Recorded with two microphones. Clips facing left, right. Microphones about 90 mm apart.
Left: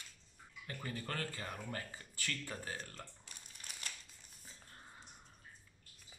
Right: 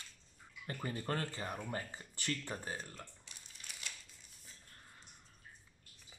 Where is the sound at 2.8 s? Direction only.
5° right (ahead or behind).